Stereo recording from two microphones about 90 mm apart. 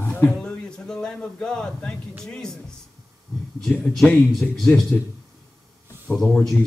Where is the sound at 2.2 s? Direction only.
5° left (ahead or behind).